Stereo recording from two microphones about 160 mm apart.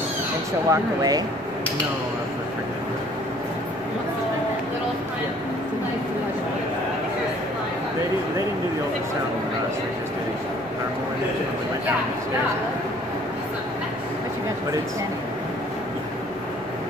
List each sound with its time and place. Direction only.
0.7 s speech: 25° right (ahead or behind)